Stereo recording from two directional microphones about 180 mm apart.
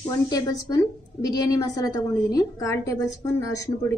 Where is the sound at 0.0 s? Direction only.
20° left (ahead or behind).